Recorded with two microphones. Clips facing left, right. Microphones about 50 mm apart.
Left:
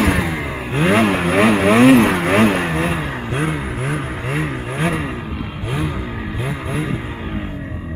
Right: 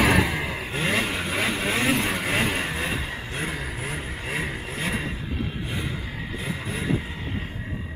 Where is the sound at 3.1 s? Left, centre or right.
Left.